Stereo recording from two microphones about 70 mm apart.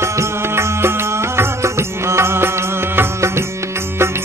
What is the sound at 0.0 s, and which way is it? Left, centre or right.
Music, right.